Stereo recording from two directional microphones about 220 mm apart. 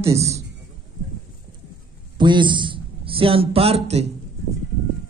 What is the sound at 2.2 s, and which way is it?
A man's voice, 20° right (ahead or behind).